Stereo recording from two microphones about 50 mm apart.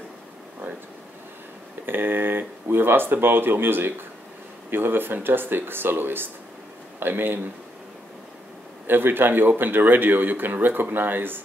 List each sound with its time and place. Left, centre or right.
1.9 s speech: right
8.8 s speech: right